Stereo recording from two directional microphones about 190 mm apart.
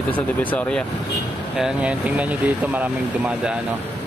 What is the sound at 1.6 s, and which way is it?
Speech, 5° right (ahead or behind).